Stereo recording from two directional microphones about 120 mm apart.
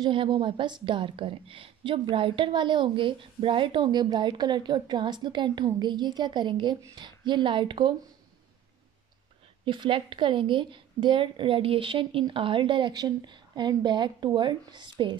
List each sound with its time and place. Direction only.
0.0 s a woman's voice: 45° right (ahead or behind)
9.7 s a woman's voice: 45° right (ahead or behind)